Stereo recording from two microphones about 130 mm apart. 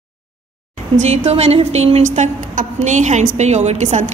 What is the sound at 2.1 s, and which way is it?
A woman's voice, 80° right.